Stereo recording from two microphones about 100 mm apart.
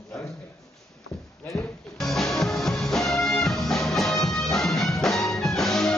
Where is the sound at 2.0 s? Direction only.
Centre (ahead or behind).